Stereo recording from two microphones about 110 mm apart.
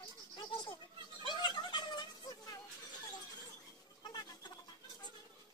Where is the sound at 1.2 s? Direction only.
45° left (ahead or behind).